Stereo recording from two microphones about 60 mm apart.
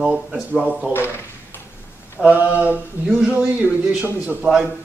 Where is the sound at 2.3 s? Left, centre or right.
Right.